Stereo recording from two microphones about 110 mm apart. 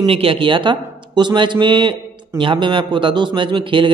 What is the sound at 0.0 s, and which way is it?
A man's voice, 55° right (ahead or behind).